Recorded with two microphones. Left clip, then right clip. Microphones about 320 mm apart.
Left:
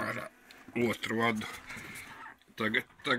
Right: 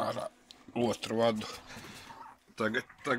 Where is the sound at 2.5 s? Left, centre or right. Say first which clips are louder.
Left 1 dB; centre.